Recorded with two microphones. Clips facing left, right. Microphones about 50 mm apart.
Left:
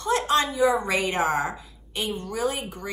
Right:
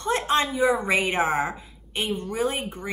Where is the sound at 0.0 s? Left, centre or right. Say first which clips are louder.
Left 1 dB; right.